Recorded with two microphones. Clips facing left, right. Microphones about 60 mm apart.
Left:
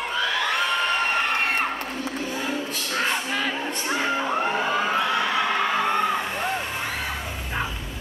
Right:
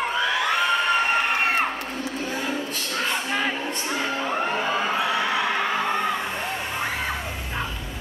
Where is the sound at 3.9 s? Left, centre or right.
Centre.